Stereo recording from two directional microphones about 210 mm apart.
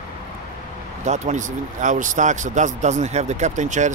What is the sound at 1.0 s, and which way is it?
Speech, 35° right (ahead or behind).